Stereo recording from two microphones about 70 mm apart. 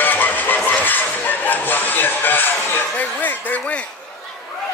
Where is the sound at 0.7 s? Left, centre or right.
Left.